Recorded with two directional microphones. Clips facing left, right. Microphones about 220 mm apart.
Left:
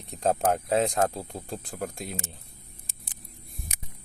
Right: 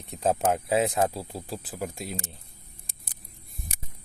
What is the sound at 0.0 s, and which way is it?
Speech, centre (ahead or behind).